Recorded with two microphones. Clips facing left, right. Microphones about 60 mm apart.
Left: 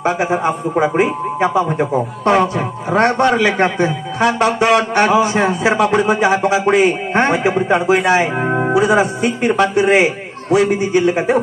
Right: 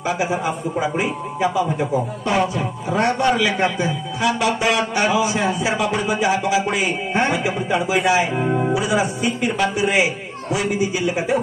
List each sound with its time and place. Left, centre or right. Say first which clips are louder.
0.0 s a man's voice: left 5 dB; left